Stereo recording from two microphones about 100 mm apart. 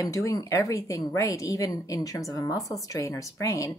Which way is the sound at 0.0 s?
35° left (ahead or behind).